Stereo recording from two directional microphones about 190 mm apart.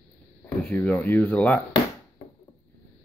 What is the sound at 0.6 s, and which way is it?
Speech, 5° left (ahead or behind).